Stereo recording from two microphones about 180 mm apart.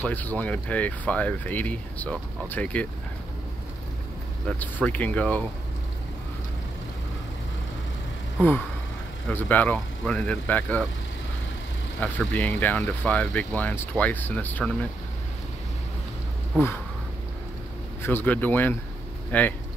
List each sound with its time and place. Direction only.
0.0 s speech: 10° left (ahead or behind)
4.5 s speech: 10° left (ahead or behind)
8.4 s speech: 10° left (ahead or behind)
12.0 s speech: 10° left (ahead or behind)
16.5 s speech: 10° left (ahead or behind)
18.0 s speech: 10° left (ahead or behind)